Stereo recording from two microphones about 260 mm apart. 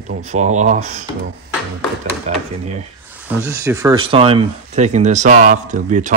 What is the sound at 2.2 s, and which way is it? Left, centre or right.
Speech, right.